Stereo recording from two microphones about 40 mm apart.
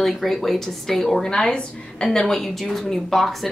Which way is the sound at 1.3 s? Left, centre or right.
Centre.